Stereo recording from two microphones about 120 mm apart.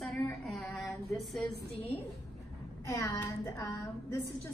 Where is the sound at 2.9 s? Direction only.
25° left (ahead or behind).